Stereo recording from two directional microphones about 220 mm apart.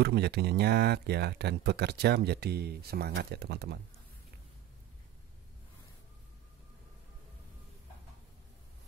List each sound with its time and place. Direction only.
0.0 s speech: 45° right (ahead or behind)